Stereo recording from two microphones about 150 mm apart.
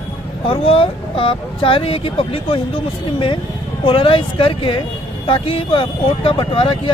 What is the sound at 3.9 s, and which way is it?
Speech, 35° left (ahead or behind).